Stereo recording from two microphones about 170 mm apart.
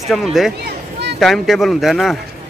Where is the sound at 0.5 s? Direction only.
75° right (ahead or behind).